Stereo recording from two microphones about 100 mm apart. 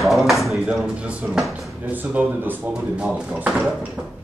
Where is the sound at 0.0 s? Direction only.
Centre (ahead or behind).